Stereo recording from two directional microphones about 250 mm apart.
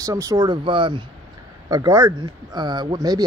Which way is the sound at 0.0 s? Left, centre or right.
Centre.